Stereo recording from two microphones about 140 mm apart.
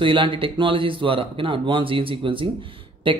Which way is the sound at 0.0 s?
35° right (ahead or behind).